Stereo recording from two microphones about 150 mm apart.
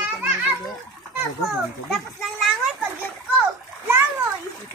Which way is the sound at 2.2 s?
Centre (ahead or behind).